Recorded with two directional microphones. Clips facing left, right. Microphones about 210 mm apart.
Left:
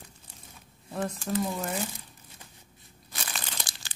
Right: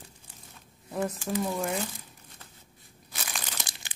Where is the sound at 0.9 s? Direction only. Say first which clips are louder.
Even; 10° right (ahead or behind).